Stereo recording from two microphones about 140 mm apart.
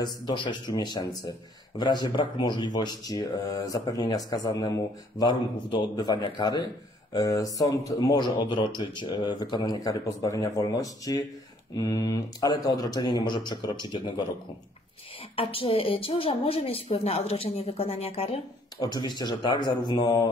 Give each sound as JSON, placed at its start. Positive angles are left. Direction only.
{"t": 0.0, "sound": "a man's voice", "side_deg": 30}
{"t": 15.3, "sound": "a woman's voice", "side_deg": 40}
{"t": 18.8, "sound": "a man's voice", "side_deg": 30}